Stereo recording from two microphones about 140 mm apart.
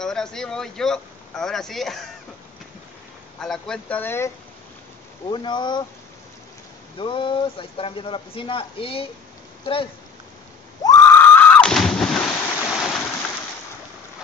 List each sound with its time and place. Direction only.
0.0 s speech: 5° left (ahead or behind)
3.3 s speech: 5° left (ahead or behind)
5.3 s speech: 35° left (ahead or behind)
7.0 s speech: 35° left (ahead or behind)
10.8 s a sound: 25° left (ahead or behind)
12.6 s a sound: centre (ahead or behind)